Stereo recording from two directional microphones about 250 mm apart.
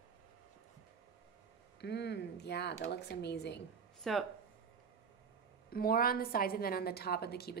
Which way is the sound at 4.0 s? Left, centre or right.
Centre.